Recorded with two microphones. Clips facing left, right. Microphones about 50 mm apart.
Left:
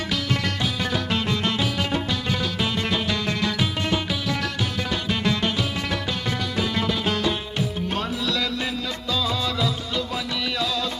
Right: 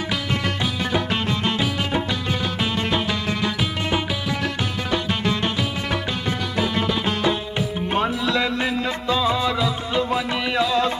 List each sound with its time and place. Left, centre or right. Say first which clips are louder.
0.9 s music: right 3 dB; right
7.2 s music: right 3 dB; right